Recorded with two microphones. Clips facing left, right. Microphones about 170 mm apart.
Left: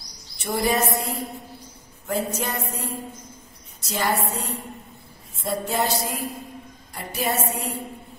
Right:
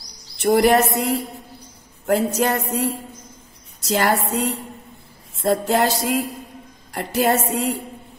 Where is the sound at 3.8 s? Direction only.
80° right.